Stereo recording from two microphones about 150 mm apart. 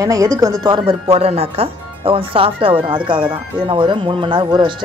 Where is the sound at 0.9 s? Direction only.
40° right (ahead or behind).